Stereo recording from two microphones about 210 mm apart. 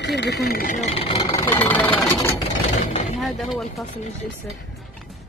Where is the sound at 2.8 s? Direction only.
35° left (ahead or behind).